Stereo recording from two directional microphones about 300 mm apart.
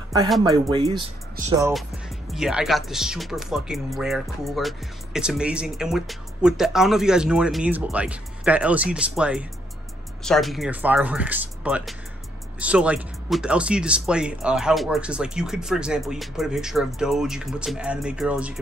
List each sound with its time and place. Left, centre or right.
0.4 s speech: centre
1.6 s speech: centre